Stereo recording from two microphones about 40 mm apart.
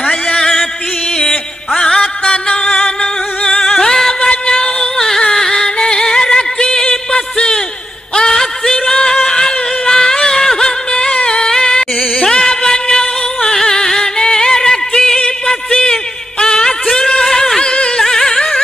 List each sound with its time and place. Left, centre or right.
0.3 s a sound: centre
1.1 s music: centre
2.4 s singing: left
4.3 s music: centre
12.4 s music: centre